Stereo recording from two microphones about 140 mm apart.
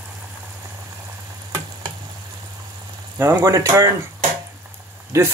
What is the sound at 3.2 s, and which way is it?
Speech, 20° right (ahead or behind).